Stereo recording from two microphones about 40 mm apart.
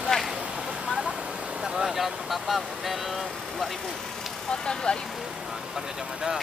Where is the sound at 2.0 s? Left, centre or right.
Centre.